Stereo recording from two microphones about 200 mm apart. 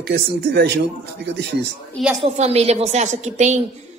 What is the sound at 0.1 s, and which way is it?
Speech, 55° right (ahead or behind).